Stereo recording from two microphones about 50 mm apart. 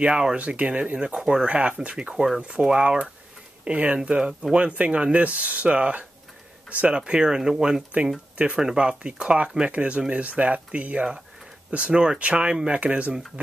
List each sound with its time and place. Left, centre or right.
0.0 s speech: centre